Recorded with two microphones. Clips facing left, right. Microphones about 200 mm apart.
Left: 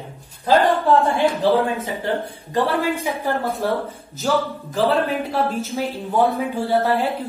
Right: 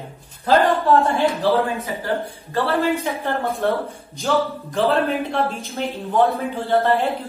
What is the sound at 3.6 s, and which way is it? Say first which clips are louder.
A woman's voice: right 1 dB; 5° left (ahead or behind).